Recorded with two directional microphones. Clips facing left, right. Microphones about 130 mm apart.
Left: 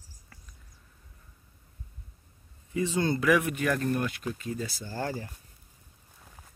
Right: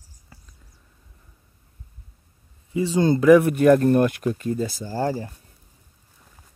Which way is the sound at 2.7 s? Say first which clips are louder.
Right 8 dB; 25° right (ahead or behind).